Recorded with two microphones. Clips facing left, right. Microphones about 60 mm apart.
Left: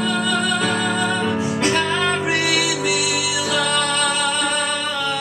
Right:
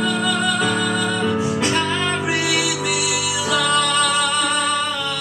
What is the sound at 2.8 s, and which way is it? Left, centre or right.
Music, centre.